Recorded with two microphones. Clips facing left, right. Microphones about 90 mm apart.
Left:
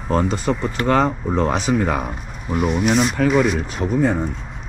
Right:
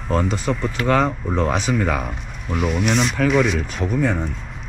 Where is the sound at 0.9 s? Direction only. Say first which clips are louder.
Left 1 dB; 40° left (ahead or behind).